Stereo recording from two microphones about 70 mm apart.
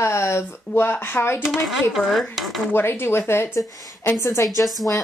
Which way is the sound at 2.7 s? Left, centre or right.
Left.